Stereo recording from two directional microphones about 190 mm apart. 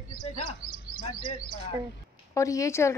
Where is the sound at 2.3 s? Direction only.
15° left (ahead or behind).